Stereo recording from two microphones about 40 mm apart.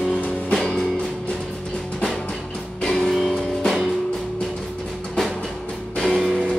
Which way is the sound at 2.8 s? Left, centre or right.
Centre.